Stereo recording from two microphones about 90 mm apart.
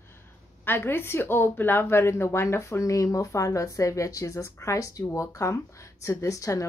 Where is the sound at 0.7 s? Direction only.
25° left (ahead or behind).